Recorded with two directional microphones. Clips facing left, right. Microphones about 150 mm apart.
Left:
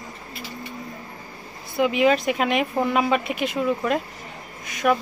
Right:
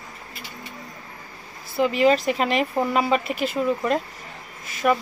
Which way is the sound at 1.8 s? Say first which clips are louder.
Even; 5° left (ahead or behind).